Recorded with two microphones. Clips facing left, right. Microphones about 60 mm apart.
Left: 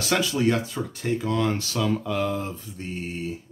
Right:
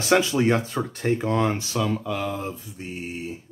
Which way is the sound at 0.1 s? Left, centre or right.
Right.